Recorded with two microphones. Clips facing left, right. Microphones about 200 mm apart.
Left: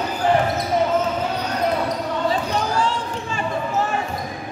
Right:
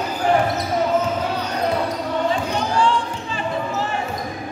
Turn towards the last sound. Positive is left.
turn(degrees=40)  # may be behind; listen again after turning